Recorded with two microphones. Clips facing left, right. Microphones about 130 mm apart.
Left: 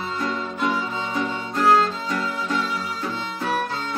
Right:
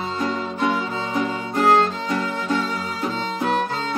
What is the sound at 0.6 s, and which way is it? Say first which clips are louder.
Music: right 2 dB; 20° right (ahead or behind).